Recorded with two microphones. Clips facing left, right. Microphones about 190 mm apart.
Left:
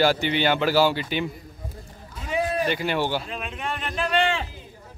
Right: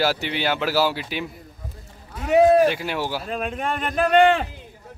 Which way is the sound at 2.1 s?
65° right (ahead or behind).